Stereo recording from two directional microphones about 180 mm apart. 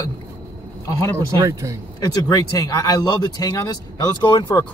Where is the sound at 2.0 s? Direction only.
20° left (ahead or behind).